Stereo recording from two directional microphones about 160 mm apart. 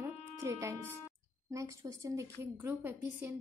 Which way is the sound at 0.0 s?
20° right (ahead or behind).